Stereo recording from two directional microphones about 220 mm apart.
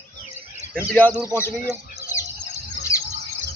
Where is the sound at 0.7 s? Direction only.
10° left (ahead or behind).